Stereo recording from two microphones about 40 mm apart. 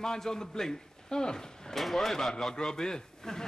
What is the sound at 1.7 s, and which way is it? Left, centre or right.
A man's voice, centre.